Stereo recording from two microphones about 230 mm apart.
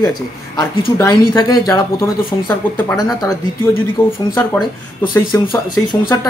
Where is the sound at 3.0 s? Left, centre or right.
Centre.